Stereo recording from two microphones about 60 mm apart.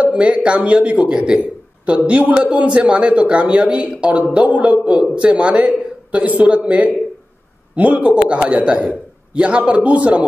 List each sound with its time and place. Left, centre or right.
0.0 s a man's voice: centre